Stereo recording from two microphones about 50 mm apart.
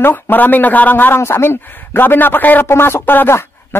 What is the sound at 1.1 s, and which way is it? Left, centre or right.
Speech, left.